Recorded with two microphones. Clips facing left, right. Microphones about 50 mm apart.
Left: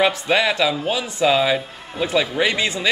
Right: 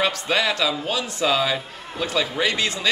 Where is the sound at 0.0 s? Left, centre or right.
Centre.